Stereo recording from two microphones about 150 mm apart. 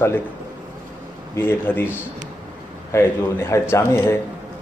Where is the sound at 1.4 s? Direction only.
15° left (ahead or behind).